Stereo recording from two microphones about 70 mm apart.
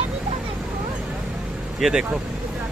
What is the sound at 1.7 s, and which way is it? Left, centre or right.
Speech, centre.